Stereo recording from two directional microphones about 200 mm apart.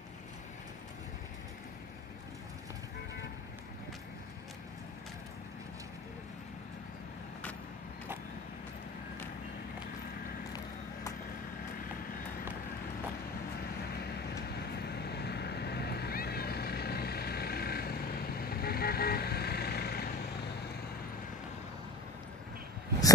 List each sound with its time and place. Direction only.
13.9 s vehicle: 55° left (ahead or behind)